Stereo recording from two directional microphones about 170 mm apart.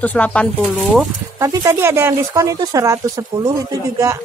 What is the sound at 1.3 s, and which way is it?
Speech, 20° right (ahead or behind).